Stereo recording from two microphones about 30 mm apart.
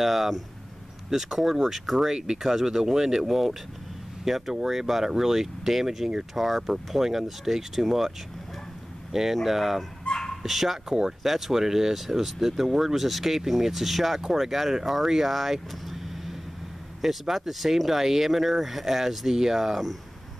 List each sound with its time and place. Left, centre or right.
0.0 s speech: centre
6.3 s speech: centre
9.1 s speech: centre
10.1 s bow-wow: centre
10.4 s speech: centre